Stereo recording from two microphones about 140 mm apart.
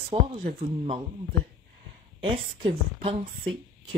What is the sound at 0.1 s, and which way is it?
Speech, 45° right (ahead or behind).